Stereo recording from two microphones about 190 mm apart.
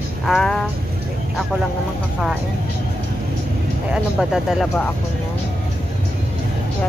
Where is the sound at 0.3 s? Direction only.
Centre (ahead or behind).